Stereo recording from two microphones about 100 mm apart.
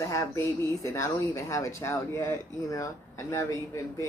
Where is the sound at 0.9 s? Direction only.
30° left (ahead or behind).